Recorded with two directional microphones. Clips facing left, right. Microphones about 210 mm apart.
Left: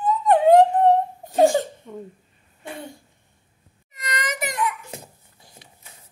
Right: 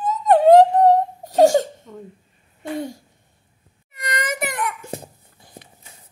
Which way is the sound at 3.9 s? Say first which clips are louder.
Right 3 dB; 55° right (ahead or behind).